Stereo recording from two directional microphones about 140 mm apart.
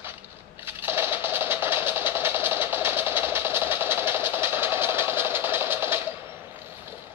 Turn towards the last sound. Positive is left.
turn(degrees=-15)  # may be behind; listen again after turning